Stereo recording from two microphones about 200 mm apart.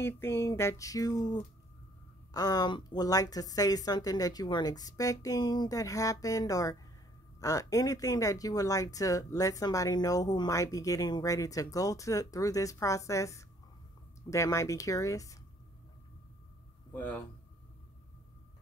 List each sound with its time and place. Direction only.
0.0 s a woman's voice: 10° left (ahead or behind)
16.9 s speech: 10° left (ahead or behind)